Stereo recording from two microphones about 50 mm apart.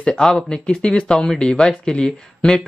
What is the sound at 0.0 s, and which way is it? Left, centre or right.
Speech, centre.